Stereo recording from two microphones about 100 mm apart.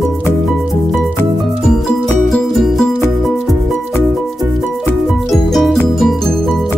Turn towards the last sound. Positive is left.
turn(degrees=0)  # may be behind; listen again after turning